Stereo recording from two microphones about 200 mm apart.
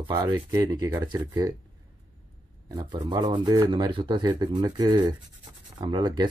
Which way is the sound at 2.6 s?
20° right (ahead or behind).